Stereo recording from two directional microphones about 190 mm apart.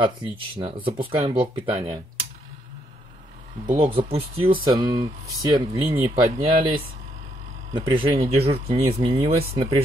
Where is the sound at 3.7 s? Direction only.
30° right (ahead or behind).